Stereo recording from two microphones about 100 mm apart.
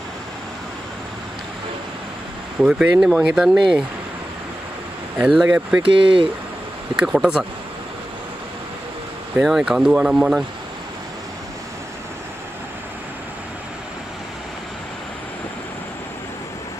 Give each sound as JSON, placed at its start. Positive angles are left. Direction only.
{"t": 2.6, "sound": "speech", "side_deg": -5}
{"t": 5.1, "sound": "speech", "side_deg": -5}
{"t": 5.8, "sound": "speech", "side_deg": -60}
{"t": 7.0, "sound": "speech", "side_deg": -5}
{"t": 9.4, "sound": "speech", "side_deg": -5}